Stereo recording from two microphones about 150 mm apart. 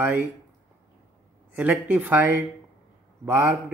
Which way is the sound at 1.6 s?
10° right (ahead or behind).